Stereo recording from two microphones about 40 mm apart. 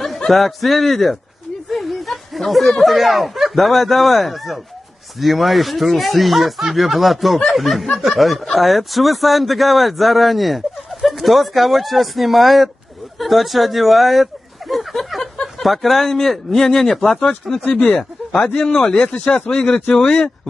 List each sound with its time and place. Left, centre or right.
0.0 s speech: centre
17.6 s speech: left
19.5 s speech: centre
19.9 s speech: left